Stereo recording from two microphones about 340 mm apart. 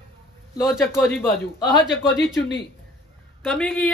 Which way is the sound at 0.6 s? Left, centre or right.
Centre.